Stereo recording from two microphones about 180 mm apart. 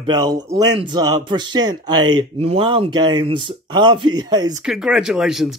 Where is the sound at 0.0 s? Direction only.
25° right (ahead or behind).